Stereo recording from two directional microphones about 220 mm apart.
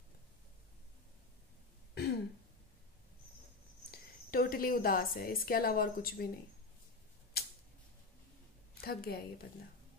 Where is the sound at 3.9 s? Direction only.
45° left (ahead or behind).